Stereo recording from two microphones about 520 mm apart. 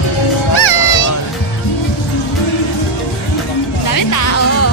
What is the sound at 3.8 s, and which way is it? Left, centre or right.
Music, left.